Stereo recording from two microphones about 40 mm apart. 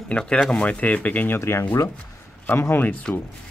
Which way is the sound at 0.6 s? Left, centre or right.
Left.